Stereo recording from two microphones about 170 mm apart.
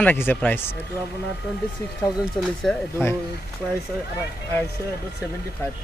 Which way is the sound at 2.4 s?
Centre (ahead or behind).